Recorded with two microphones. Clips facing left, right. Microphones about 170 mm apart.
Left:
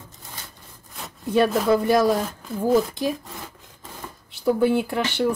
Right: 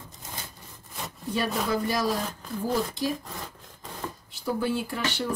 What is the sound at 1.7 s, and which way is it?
Speech, 55° left (ahead or behind).